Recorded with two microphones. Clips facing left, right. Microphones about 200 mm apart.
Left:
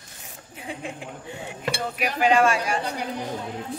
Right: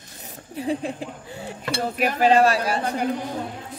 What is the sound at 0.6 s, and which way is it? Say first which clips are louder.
Speech: right 9 dB; 35° right (ahead or behind).